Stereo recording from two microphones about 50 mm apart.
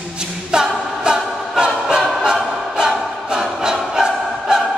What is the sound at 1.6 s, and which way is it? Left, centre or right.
Choir, centre.